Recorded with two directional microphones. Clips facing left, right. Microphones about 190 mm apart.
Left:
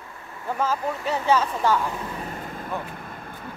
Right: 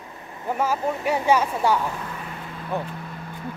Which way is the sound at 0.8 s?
20° right (ahead or behind).